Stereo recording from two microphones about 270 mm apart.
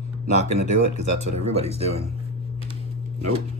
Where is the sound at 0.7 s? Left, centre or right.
Right.